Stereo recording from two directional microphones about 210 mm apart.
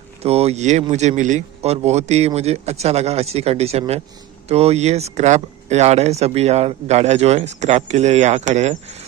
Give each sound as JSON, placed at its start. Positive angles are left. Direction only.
{"t": 0.2, "sound": "speech", "side_deg": -30}